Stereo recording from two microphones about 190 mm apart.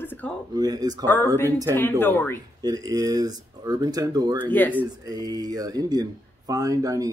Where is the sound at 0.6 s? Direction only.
20° right (ahead or behind).